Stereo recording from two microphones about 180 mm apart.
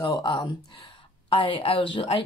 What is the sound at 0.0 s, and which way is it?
Speech, 25° left (ahead or behind).